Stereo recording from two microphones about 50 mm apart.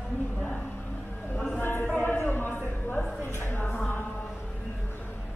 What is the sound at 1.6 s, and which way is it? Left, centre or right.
Music, left.